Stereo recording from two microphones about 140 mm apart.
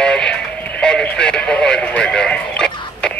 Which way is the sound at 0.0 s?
5° left (ahead or behind).